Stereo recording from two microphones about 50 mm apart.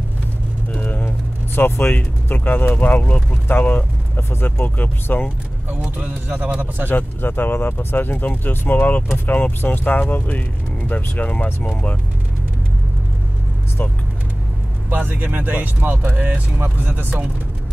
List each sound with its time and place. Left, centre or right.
0.7 s a sound: left
2.3 s speech: left
5.9 s speech: right
6.9 s speech: left
14.9 s speech: right
16.5 s speech: right